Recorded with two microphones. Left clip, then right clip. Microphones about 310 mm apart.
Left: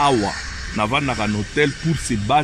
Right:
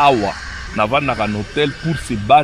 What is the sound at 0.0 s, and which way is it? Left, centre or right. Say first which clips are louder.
Speech: right 4 dB; left.